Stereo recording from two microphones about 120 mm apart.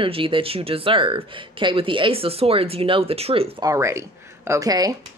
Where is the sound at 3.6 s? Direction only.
25° right (ahead or behind).